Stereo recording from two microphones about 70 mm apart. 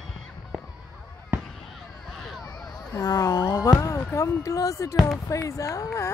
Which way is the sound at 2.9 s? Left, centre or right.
Left.